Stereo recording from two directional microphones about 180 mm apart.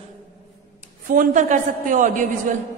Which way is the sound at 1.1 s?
45° right (ahead or behind).